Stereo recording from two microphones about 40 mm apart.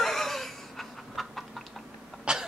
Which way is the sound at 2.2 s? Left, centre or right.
Right.